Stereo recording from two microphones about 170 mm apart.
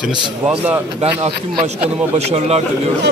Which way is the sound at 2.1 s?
40° right (ahead or behind).